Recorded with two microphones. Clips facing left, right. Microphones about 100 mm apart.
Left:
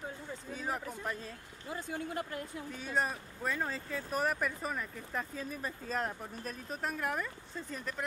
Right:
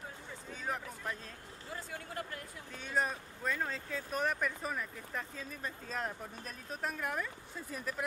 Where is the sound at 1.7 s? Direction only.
20° left (ahead or behind).